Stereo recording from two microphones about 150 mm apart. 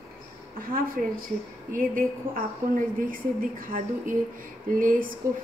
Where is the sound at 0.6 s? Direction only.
75° right (ahead or behind).